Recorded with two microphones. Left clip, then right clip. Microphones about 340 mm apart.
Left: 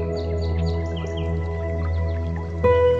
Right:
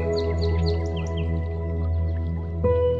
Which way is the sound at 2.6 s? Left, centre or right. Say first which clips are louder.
Left 5 dB; left.